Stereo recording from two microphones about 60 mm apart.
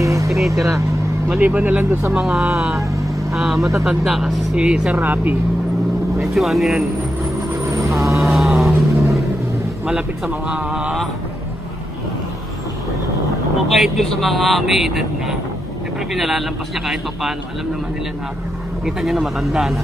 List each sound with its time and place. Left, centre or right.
0.0 s music: right
0.5 s speech: right
1.4 s speech: right
2.1 s speech: centre
2.8 s vehicle: right
3.3 s speech: centre
5.0 s speech: right
6.2 s speech: centre
7.5 s vehicle: right
8.2 s a sound: centre
9.8 s speech: centre
13.7 s speech: centre
18.9 s speech: centre